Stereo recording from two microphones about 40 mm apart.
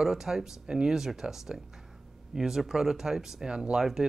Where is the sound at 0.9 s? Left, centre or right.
Centre.